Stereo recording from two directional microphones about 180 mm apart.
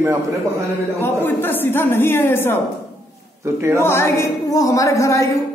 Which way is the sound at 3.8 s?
15° left (ahead or behind).